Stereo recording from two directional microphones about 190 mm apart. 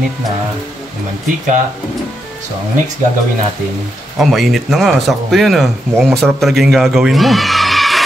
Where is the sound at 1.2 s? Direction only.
40° right (ahead or behind).